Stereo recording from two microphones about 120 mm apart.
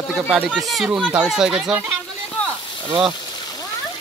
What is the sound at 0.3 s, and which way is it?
Speech, 10° right (ahead or behind).